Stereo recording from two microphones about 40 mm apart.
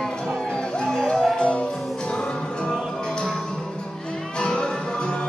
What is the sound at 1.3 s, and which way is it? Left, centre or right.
Music, left.